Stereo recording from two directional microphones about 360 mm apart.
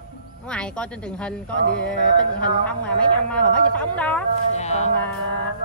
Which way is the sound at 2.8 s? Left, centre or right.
Centre.